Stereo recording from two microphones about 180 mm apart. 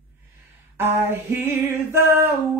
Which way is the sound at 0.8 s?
10° right (ahead or behind).